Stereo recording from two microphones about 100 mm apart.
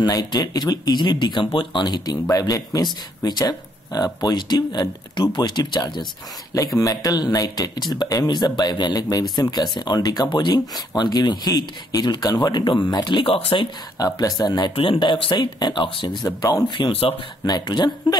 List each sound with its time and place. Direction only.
0.0 s speech: 40° left (ahead or behind)
6.8 s speech: 35° left (ahead or behind); by 13.7 s 65° left (ahead or behind)
13.9 s speech: 40° left (ahead or behind)
14.8 s speech: 55° left (ahead or behind)
16.3 s speech: 35° left (ahead or behind)
16.6 s speech: 50° left (ahead or behind)